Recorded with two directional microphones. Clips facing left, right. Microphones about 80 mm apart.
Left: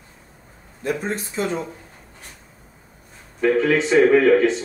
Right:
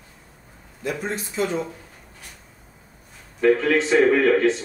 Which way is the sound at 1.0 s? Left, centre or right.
Left.